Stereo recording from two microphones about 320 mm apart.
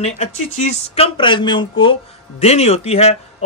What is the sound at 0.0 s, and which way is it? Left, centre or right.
A man's voice, left.